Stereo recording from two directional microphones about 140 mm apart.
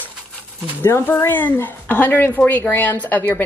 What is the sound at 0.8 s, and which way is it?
A woman's voice, 15° left (ahead or behind).